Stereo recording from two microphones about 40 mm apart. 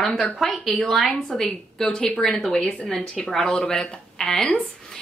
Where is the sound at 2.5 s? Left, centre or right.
Left.